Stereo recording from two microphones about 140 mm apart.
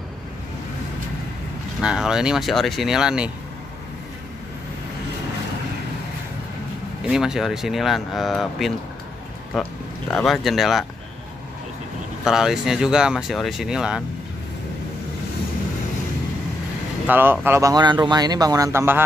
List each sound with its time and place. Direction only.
1.8 s speech: 5° right (ahead or behind)
7.1 s speech: 5° right (ahead or behind)
10.1 s speech: centre (ahead or behind)
12.3 s speech: 5° right (ahead or behind)
17.0 s speech: 15° right (ahead or behind)